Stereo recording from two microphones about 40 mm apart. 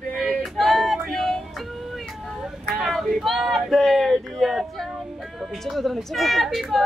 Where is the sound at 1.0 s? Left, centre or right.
Centre.